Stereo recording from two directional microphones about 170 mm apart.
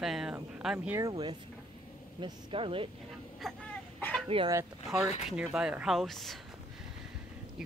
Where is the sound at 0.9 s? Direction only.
20° right (ahead or behind).